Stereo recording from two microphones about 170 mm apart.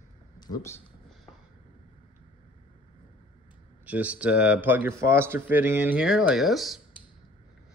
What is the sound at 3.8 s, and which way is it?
Speech, 10° right (ahead or behind).